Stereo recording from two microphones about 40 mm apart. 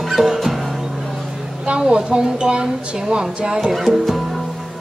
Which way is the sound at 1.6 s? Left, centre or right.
Right.